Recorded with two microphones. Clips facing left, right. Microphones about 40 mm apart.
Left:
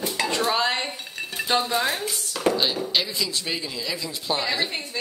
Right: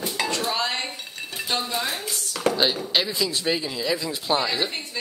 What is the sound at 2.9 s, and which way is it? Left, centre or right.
Speech, right.